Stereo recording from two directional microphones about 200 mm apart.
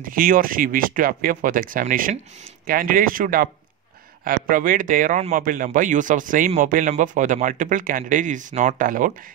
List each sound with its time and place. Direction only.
0.0 s speech: 45° right (ahead or behind)